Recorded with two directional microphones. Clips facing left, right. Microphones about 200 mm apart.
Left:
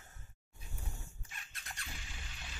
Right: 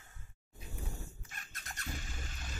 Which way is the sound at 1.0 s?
45° right (ahead or behind).